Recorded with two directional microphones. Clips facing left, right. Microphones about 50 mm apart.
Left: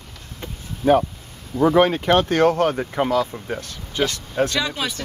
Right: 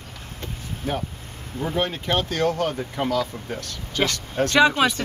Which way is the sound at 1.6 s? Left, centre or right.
Left.